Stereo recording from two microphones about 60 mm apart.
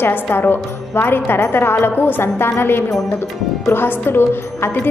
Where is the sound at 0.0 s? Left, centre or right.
Left.